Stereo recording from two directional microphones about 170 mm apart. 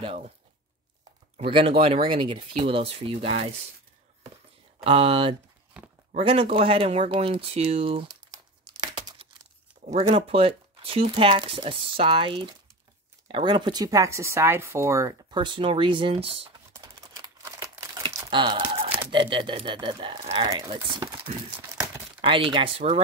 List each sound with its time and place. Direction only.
0.0 s speech: 35° right (ahead or behind)
1.3 s speech: 30° right (ahead or behind)
4.8 s speech: 35° right (ahead or behind)
5.7 s walk: 5° right (ahead or behind)
6.1 s speech: 35° right (ahead or behind)
8.3 s crumpling: 25° right (ahead or behind)
9.9 s speech: 35° right (ahead or behind)
16.7 s crumpling: 20° right (ahead or behind)
18.4 s speech: 30° right (ahead or behind)
22.2 s speech: 30° right (ahead or behind)